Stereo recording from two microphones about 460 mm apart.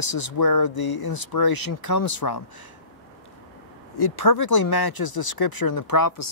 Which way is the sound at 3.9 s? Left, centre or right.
Left.